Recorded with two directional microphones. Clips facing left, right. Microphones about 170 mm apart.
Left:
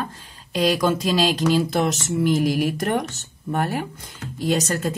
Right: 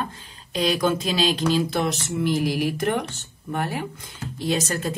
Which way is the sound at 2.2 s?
45° left (ahead or behind).